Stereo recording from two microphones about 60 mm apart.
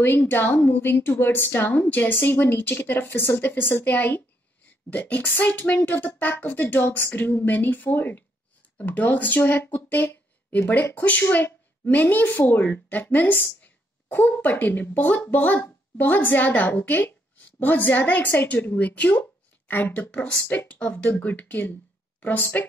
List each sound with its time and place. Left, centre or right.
0.0 s speech: left
20.9 s speech: left
21.2 s speech: left